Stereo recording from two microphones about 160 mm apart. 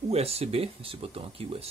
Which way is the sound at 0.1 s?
40° right (ahead or behind).